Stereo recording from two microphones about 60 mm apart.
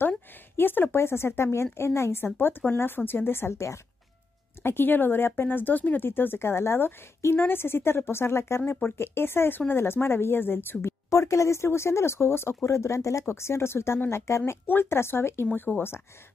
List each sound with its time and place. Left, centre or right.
0.6 s a woman's voice: left
4.6 s a woman's voice: left